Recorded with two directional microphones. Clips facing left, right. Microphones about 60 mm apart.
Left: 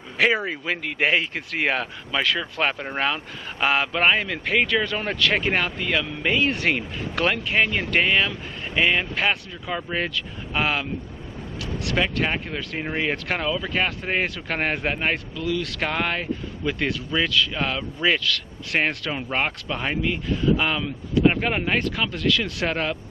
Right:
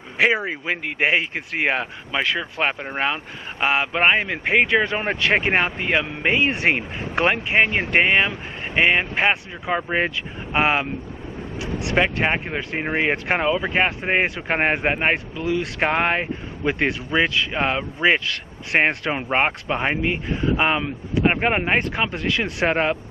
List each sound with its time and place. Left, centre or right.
0.2 s speech: right